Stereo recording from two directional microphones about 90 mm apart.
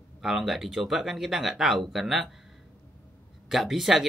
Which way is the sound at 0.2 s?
5° right (ahead or behind).